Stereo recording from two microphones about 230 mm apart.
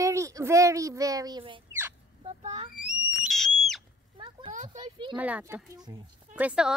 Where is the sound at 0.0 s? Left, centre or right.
Centre.